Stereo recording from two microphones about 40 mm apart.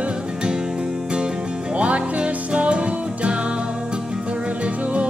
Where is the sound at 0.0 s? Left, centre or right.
Right.